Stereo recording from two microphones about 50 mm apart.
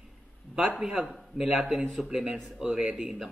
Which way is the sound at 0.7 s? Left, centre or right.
Centre.